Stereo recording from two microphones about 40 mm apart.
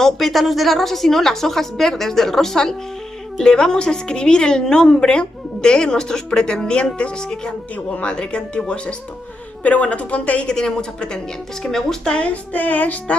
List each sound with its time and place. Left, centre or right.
0.0 s a woman's voice: centre; by 8.9 s left
9.6 s child singing: left
10.4 s a woman's voice: centre
12.2 s child singing: left